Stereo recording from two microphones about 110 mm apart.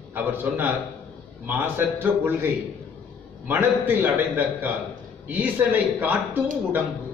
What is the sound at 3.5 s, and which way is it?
Speech, 20° right (ahead or behind).